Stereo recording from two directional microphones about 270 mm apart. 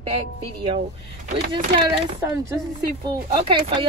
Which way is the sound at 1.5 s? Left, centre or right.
Centre.